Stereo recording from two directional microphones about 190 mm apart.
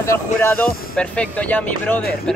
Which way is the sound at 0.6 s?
5° left (ahead or behind).